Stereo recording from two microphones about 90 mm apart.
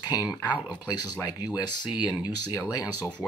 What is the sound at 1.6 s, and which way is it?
Speech, 50° left (ahead or behind).